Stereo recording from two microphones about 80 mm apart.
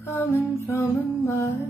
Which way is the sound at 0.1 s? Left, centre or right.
Left.